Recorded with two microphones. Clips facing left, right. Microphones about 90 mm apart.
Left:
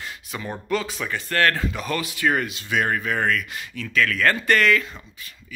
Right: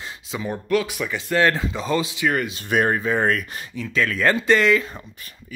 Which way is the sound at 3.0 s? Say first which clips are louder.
Right 3 dB; 25° right (ahead or behind).